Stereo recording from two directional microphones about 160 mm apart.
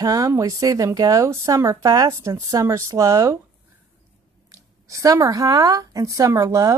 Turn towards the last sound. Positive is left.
turn(degrees=-20)  # may be behind; listen again after turning